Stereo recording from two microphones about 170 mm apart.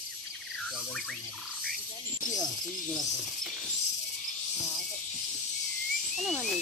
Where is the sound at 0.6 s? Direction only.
Centre (ahead or behind).